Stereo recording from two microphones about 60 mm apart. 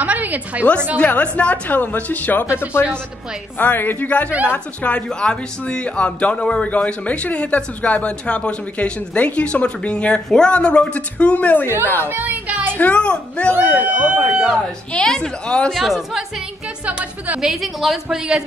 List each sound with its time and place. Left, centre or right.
0.0 s a sound: right
0.9 s speech: left
3.5 s speech: left
11.6 s speech: right
12.1 s music: right
12.7 s speech: left
13.5 s speech: right; by 14.6 s centre
15.0 s a woman's voice: centre
15.7 s a woman's voice: centre
17.4 s a woman's voice: centre